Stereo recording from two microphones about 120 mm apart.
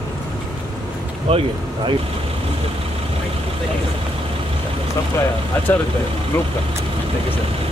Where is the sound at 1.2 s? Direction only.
55° right (ahead or behind).